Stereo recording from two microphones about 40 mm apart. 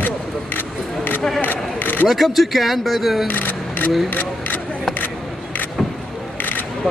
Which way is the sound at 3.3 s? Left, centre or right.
Left.